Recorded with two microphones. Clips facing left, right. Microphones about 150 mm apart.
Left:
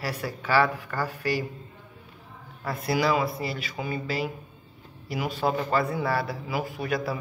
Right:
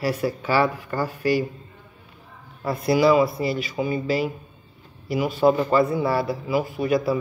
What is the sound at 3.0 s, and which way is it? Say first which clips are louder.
Speech: right 8 dB; 30° right (ahead or behind).